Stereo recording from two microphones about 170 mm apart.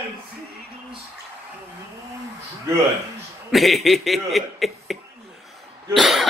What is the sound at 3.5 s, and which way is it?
Speech, centre (ahead or behind).